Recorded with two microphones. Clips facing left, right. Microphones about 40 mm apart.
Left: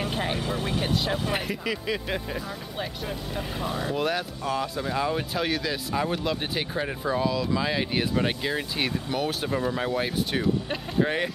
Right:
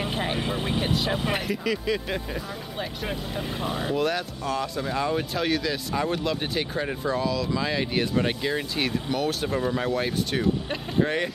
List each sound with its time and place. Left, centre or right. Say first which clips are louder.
0.0 s vehicle: even; centre
0.4 s speech: right 1 dB; right
1.3 s speech: right 2 dB; centre
3.3 s speech: left 1 dB; centre
3.9 s speech: right 3 dB; centre